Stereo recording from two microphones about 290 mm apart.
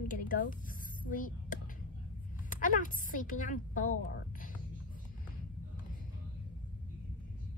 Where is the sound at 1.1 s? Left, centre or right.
Left.